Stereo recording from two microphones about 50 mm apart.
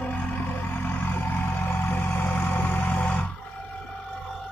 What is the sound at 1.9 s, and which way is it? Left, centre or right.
Vehicle, left.